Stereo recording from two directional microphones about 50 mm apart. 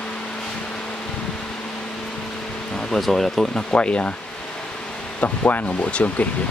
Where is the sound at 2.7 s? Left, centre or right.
Centre.